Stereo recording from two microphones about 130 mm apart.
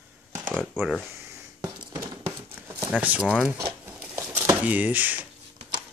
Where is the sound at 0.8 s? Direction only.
15° right (ahead or behind).